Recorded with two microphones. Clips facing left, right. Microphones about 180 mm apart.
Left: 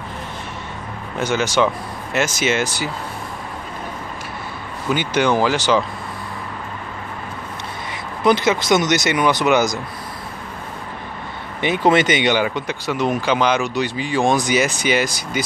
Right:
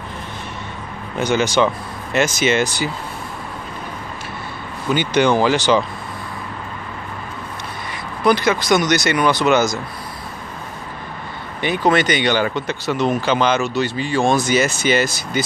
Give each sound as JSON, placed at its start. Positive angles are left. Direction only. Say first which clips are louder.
{"t": 1.2, "sound": "speech", "louder": "right 1 dB", "side_deg": 5}
{"t": 4.9, "sound": "speech", "louder": "right 2 dB", "side_deg": 5}
{"t": 8.2, "sound": "speech", "louder": "even", "side_deg": 20}
{"t": 11.6, "sound": "speech", "louder": "left 1 dB", "side_deg": 20}